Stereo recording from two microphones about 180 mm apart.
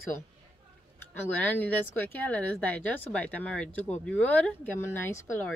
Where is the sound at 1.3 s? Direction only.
10° left (ahead or behind).